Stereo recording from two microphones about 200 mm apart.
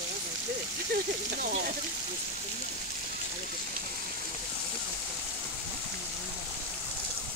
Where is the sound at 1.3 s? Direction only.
45° right (ahead or behind).